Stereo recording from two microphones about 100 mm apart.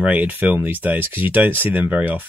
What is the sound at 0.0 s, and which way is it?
Speech, 15° right (ahead or behind).